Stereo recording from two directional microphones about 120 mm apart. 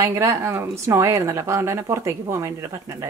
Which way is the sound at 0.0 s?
25° right (ahead or behind).